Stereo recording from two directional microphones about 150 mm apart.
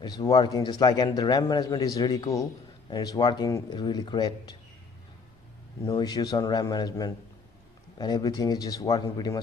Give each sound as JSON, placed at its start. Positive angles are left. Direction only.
{"t": 0.0, "sound": "a man's voice", "side_deg": 25}
{"t": 5.9, "sound": "a man's voice", "side_deg": 30}